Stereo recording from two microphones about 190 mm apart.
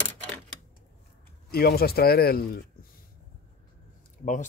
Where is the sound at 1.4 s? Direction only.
55° left (ahead or behind).